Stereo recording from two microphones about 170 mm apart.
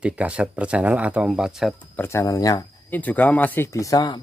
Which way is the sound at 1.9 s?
15° left (ahead or behind).